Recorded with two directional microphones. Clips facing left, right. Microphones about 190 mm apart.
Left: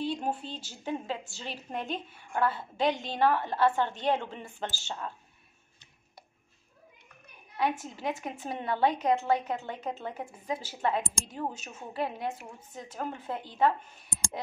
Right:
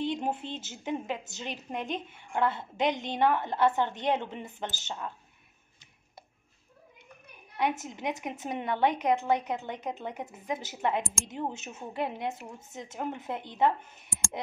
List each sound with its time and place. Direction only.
0.0 s a woman's voice: 20° right (ahead or behind)
7.8 s a woman's voice: 20° right (ahead or behind)